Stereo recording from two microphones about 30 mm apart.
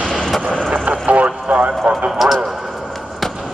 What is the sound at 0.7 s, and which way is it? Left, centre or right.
Vehicle, right.